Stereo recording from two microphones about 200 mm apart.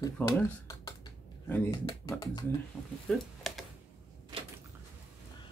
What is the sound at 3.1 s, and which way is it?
Speech, centre (ahead or behind).